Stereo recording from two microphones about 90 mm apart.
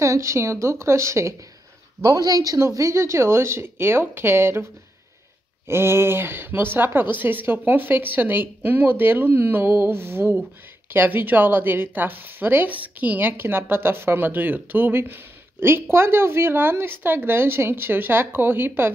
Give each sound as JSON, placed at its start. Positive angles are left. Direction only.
{"t": 0.0, "sound": "a woman's voice", "side_deg": -35}
{"t": 5.7, "sound": "speech", "side_deg": -30}